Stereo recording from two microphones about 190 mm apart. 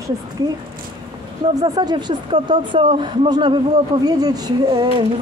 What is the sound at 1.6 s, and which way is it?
Speech, 20° right (ahead or behind).